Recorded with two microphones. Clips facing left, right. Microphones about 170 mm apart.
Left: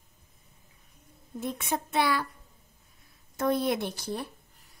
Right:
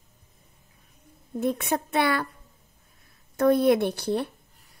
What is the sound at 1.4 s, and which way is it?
Speech, 60° right (ahead or behind).